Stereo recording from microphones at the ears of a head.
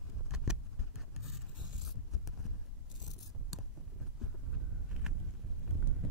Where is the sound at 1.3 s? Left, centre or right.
Left.